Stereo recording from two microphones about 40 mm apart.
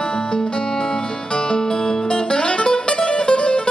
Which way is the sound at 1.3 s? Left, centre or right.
Centre.